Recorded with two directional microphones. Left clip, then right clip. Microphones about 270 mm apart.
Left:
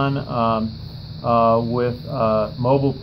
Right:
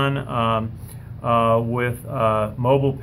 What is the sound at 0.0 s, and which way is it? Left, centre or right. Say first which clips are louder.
Speech: left 1 dB; right.